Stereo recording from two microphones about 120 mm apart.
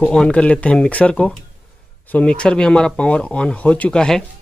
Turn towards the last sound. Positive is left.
turn(degrees=5)  # may be behind; listen again after turning